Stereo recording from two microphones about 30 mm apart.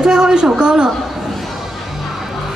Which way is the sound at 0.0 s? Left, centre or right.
Right.